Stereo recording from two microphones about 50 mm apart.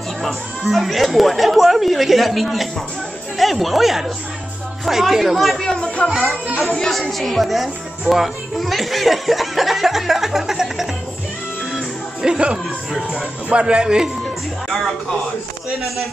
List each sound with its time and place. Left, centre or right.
0.2 s speech: centre
5.6 s chatter: centre
6.0 s speech: centre
12.2 s speech: centre